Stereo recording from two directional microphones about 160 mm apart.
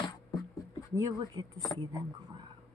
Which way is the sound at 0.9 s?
20° right (ahead or behind).